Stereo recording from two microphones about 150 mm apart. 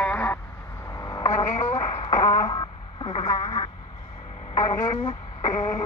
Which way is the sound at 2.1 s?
25° left (ahead or behind).